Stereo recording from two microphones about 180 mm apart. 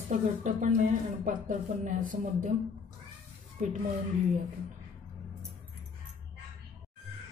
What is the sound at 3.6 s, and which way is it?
Speech, 45° right (ahead or behind).